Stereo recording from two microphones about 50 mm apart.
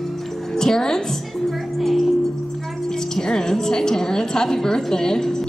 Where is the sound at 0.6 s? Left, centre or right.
Centre.